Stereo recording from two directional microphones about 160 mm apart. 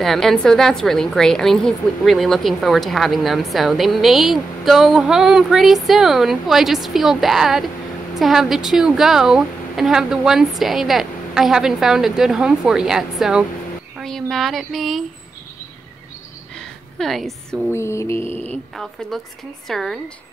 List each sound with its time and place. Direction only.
0.0 s a woman's voice: centre (ahead or behind)
16.5 s a sound: centre (ahead or behind)
17.6 s music: 15° left (ahead or behind)
18.3 s speech: 40° right (ahead or behind)
18.8 s a woman's voice: centre (ahead or behind)